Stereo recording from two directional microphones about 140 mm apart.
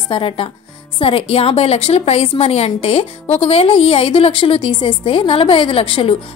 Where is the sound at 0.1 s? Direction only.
40° left (ahead or behind).